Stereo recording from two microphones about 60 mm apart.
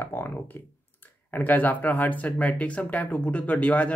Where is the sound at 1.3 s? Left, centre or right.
Left.